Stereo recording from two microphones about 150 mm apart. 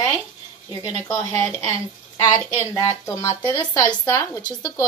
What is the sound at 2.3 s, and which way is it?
Speech, 20° left (ahead or behind).